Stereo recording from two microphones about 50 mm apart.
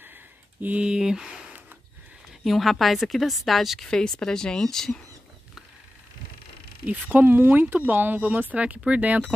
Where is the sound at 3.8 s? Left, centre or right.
Centre.